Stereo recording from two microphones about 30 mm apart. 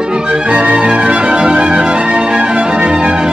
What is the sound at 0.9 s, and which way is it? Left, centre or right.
Music, right.